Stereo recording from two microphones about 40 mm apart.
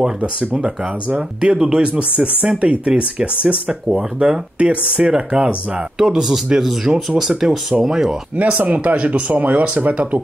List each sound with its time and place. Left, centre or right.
0.0 s speech: right
4.6 s speech: right; by 7.3 s centre
7.3 s speech: centre
8.4 s speech: right